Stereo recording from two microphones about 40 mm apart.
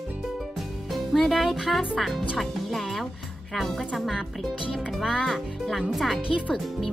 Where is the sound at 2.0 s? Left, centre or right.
Centre.